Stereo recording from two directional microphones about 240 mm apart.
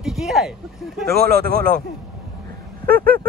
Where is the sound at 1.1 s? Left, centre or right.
Right.